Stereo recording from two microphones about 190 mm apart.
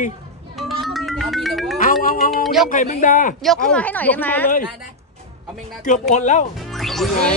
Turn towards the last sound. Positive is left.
turn(degrees=5)  # may be behind; listen again after turning